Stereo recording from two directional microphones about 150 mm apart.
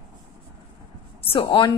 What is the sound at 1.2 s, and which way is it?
Speech, 35° left (ahead or behind).